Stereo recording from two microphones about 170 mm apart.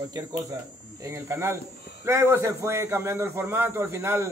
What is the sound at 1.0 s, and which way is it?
A man's voice, 15° right (ahead or behind).